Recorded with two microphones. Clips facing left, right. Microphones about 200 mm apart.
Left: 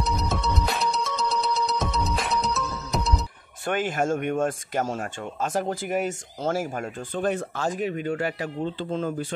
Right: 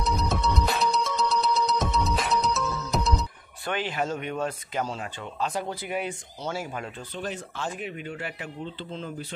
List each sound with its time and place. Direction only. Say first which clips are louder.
0.0 s music: even; centre (ahead or behind)
3.6 s speech: left 4 dB; 45° left (ahead or behind)